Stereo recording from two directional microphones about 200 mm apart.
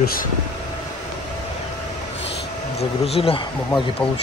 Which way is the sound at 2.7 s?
30° left (ahead or behind).